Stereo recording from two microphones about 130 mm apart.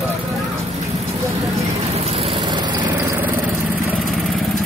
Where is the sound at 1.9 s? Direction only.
50° right (ahead or behind); by 2.7 s 35° right (ahead or behind).